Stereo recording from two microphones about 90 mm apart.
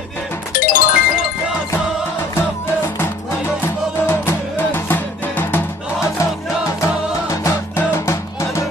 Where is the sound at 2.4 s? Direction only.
25° left (ahead or behind).